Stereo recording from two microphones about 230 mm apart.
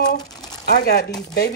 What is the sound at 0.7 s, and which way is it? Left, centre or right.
Speech, left.